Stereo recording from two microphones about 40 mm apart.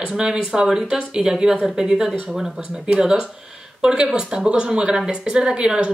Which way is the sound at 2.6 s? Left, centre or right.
Right.